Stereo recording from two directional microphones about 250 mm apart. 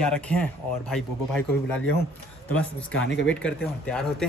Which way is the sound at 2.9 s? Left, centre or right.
Left.